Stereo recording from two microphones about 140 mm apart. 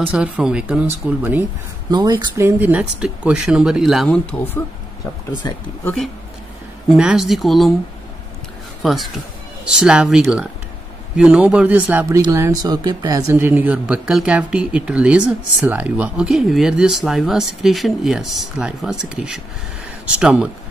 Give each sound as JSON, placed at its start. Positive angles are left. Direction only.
{"t": 0.1, "sound": "speech", "side_deg": -5}
{"t": 1.9, "sound": "speech", "side_deg": -30}
{"t": 2.3, "sound": "speech", "side_deg": -15}
{"t": 7.0, "sound": "speech", "side_deg": -5}
{"t": 8.8, "sound": "speech", "side_deg": 0}
{"t": 13.3, "sound": "speech", "side_deg": -15}